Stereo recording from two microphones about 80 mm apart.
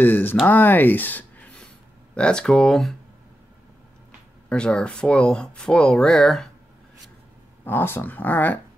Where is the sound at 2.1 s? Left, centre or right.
Centre.